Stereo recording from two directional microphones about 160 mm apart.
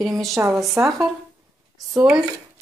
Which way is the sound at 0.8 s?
10° right (ahead or behind).